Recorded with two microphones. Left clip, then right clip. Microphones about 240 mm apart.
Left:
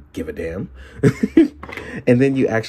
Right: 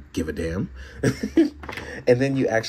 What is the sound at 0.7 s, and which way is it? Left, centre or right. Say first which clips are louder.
Cough: left 11 dB; centre.